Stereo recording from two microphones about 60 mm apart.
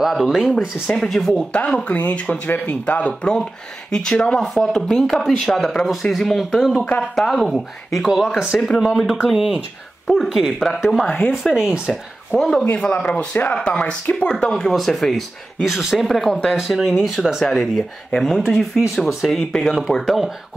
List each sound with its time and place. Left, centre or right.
0.0 s speech: centre
1.9 s speech: left
2.4 s speech: left
3.9 s speech: centre
11.5 s speech: centre
12.4 s speech: centre
12.7 s speech: left; by 20.2 s centre